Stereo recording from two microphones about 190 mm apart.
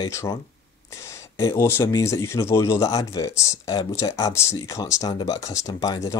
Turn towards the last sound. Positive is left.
turn(degrees=20)  # may be behind; listen again after turning